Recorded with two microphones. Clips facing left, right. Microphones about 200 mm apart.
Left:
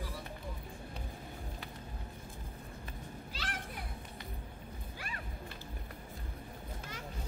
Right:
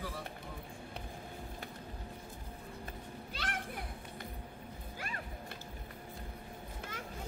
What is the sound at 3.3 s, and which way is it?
Children playing, 55° right (ahead or behind).